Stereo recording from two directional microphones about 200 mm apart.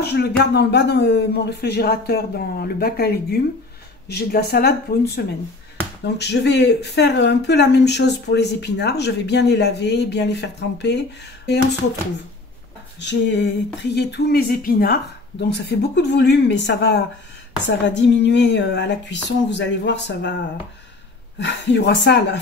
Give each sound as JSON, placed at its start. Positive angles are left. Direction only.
{"t": 0.0, "sound": "speech", "side_deg": 55}
{"t": 13.0, "sound": "speech", "side_deg": 60}
{"t": 21.4, "sound": "speech", "side_deg": 60}